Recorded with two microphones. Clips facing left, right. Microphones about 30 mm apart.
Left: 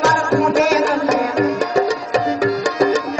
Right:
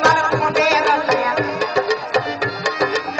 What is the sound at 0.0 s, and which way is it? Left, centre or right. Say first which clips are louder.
Music: even; centre.